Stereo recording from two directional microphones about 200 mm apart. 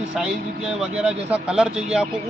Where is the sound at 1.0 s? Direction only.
5° right (ahead or behind).